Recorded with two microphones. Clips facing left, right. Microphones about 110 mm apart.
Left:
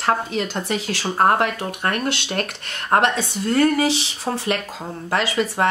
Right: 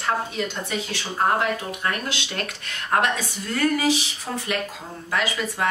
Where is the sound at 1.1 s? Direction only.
60° left (ahead or behind).